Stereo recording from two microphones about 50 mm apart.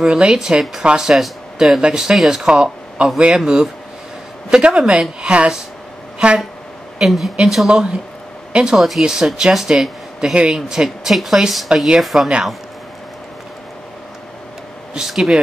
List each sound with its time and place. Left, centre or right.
0.0 s speech: centre
1.8 s speech: centre
7.0 s speech: centre
8.7 s speech: centre
9.0 s speech: centre
15.0 s speech: centre